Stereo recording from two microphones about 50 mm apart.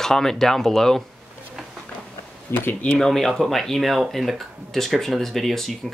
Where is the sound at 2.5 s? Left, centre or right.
Left.